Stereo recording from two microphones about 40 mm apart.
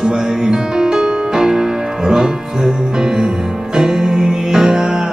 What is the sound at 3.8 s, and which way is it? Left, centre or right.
Music, centre.